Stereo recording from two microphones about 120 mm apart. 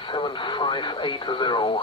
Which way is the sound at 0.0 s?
40° left (ahead or behind).